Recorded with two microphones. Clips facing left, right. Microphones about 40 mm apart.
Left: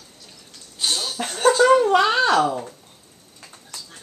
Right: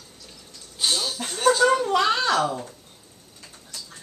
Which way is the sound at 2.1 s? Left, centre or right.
Left.